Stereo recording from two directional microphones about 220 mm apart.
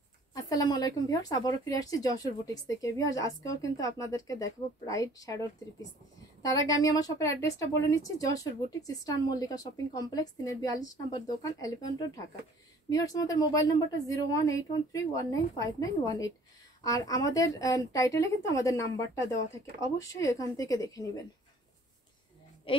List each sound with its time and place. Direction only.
0.3 s speech: 15° left (ahead or behind)